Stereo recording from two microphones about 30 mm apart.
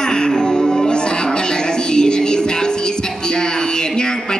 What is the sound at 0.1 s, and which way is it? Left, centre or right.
Music, left.